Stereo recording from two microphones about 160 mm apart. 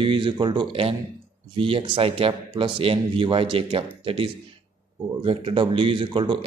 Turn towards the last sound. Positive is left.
turn(degrees=-30)  # may be behind; listen again after turning